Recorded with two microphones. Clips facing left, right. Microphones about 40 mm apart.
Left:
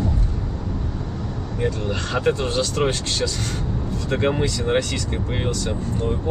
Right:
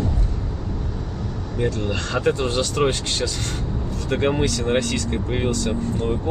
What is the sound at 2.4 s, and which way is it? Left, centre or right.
Speech, right.